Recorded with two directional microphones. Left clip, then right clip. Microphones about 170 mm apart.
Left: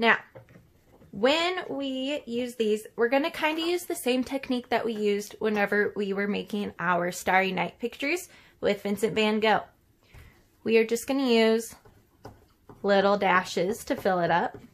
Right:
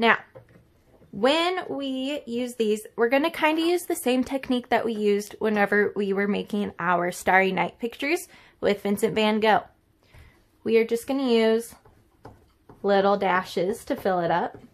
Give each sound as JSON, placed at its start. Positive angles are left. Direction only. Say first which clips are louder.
{"t": 1.2, "sound": "speech", "louder": "right 2 dB", "side_deg": -30}
{"t": 10.6, "sound": "speech", "louder": "right 2 dB", "side_deg": -20}
{"t": 12.8, "sound": "speech", "louder": "right 1 dB", "side_deg": -20}